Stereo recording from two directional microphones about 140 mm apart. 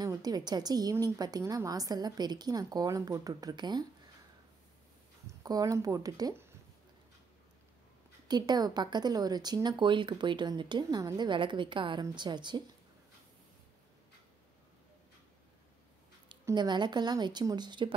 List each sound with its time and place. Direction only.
0.0 s a woman's voice: 30° right (ahead or behind)
5.2 s speech: 25° right (ahead or behind)
8.3 s a woman's voice: 30° right (ahead or behind)
16.5 s a woman's voice: 30° right (ahead or behind)